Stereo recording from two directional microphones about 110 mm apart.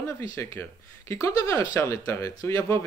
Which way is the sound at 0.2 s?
30° left (ahead or behind).